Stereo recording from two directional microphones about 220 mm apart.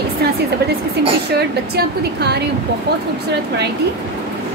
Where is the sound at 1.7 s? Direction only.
45° right (ahead or behind).